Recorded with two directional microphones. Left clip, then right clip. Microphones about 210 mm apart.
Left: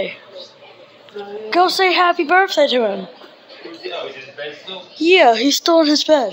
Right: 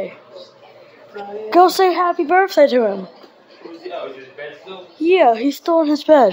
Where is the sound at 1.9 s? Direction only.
10° right (ahead or behind).